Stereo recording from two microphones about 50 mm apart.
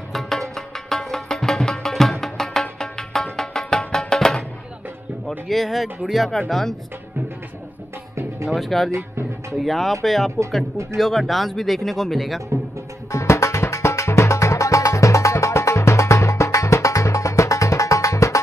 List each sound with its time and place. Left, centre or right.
0.1 s music: centre
5.5 s speech: centre
8.5 s speech: centre
8.9 s music: right
9.6 s speech: centre
13.1 s music: left